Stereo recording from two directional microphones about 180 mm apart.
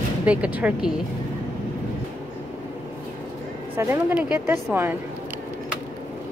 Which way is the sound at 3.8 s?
10° right (ahead or behind).